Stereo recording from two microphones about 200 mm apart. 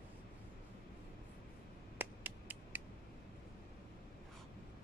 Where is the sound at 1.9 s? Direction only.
10° right (ahead or behind).